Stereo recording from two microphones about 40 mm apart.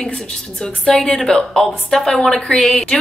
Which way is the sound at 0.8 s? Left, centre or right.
Left.